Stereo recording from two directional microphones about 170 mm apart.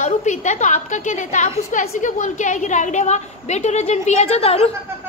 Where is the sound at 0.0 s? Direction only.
45° left (ahead or behind).